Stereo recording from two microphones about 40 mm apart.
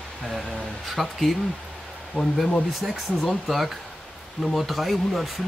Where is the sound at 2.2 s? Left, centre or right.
Right.